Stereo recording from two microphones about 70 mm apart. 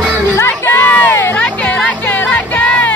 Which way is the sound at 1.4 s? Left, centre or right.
Centre.